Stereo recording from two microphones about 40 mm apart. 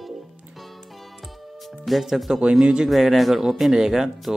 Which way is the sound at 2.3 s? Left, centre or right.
Centre.